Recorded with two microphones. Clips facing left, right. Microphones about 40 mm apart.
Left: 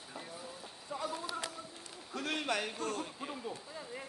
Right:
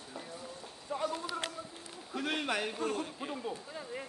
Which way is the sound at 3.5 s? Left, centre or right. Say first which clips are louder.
Right 3 dB; right.